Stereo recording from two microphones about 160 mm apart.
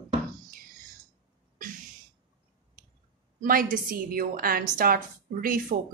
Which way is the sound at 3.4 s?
60° right (ahead or behind).